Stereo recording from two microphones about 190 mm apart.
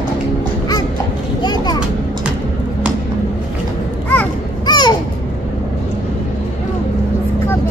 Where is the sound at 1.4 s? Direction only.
20° left (ahead or behind).